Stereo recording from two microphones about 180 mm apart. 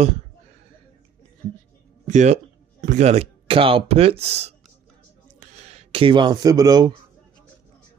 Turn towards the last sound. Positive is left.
turn(degrees=-20)  # may be behind; listen again after turning